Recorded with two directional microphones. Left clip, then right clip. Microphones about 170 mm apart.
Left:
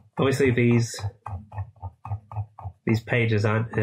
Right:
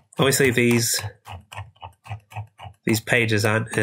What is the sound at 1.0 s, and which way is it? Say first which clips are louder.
Speech: right 3 dB; 55° right (ahead or behind).